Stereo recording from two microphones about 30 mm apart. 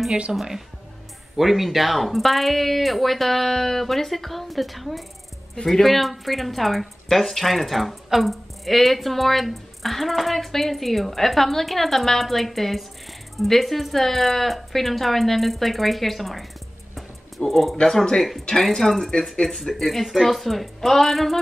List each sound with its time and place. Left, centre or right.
0.3 s speech: centre
16.9 s music: centre
17.8 s speech: centre